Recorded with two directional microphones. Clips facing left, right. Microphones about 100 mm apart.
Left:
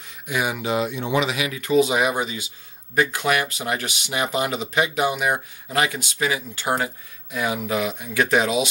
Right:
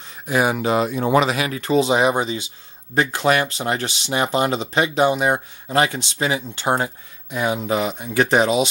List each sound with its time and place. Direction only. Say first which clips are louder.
0.0 s speech: right 6 dB; 35° right (ahead or behind)